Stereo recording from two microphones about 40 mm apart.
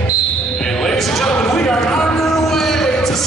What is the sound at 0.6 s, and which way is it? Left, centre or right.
Basketball bounce, centre.